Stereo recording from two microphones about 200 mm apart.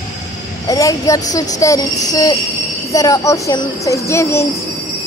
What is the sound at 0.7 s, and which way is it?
A woman's voice, 15° left (ahead or behind).